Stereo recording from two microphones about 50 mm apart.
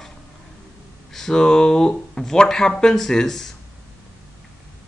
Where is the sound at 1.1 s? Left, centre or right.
Centre.